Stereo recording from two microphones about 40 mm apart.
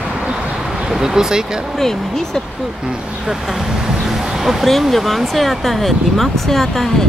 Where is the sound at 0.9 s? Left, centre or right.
Centre.